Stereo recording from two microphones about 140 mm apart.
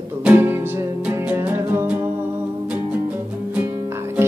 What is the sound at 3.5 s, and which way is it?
Music, 15° right (ahead or behind).